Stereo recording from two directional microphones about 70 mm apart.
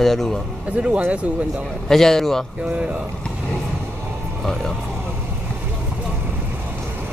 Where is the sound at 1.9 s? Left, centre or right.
Centre.